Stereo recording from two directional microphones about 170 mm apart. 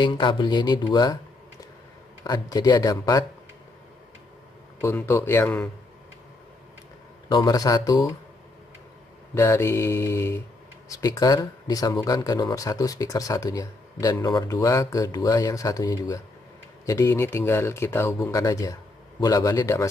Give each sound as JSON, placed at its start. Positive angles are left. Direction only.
{"t": 0.0, "sound": "speech", "side_deg": 30}
{"t": 2.2, "sound": "speech", "side_deg": 25}
{"t": 4.8, "sound": "speech", "side_deg": 15}
{"t": 7.2, "sound": "speech", "side_deg": 25}
{"t": 9.3, "sound": "speech", "side_deg": 15}